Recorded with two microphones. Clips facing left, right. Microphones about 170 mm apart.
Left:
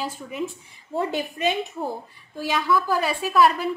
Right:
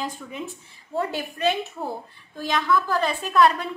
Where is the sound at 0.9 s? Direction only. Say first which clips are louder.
Left 1 dB; 15° left (ahead or behind).